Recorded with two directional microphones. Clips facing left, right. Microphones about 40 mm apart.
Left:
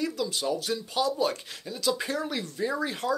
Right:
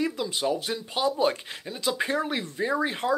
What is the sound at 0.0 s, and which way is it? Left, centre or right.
Speech, right.